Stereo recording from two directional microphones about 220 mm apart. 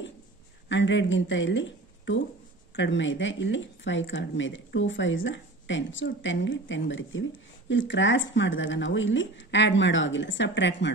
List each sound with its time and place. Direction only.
0.7 s speech: 55° left (ahead or behind)